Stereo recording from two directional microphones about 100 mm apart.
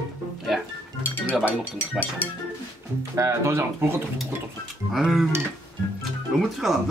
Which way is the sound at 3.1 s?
30° right (ahead or behind).